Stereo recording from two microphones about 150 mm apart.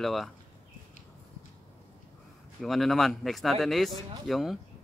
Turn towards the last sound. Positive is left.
turn(degrees=0)  # may be behind; listen again after turning